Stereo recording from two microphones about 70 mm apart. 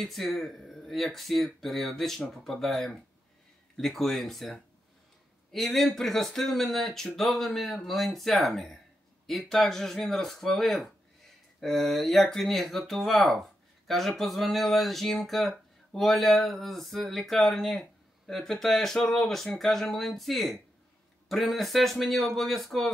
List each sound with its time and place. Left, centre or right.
0.0 s speech: centre